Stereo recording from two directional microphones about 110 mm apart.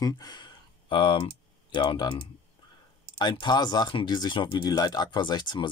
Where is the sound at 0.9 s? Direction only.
50° left (ahead or behind).